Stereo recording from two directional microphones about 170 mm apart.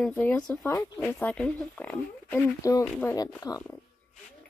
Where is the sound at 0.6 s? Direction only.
15° left (ahead or behind).